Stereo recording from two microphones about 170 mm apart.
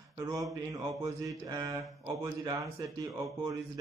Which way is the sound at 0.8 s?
20° right (ahead or behind).